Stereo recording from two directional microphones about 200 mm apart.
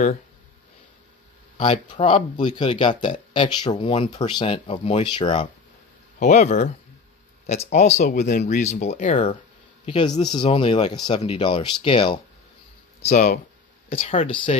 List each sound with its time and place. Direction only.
2.0 s speech: 25° left (ahead or behind)
6.1 s speech: 35° left (ahead or behind)
13.0 s speech: 35° left (ahead or behind)